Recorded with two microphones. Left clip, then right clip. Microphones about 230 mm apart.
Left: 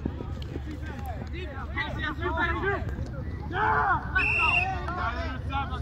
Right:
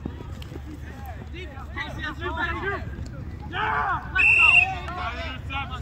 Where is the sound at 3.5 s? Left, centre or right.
Centre.